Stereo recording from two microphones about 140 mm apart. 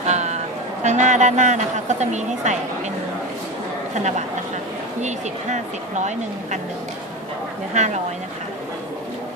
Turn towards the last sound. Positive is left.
turn(degrees=-55)  # may be behind; listen again after turning